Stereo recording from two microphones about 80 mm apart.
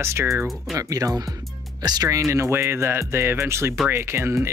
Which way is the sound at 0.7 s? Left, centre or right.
Right.